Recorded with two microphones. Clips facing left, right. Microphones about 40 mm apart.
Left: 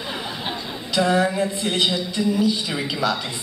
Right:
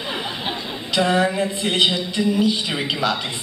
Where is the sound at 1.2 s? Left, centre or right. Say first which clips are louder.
Right 1 dB; centre.